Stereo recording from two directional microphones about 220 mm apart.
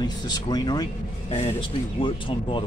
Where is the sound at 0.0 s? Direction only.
20° left (ahead or behind).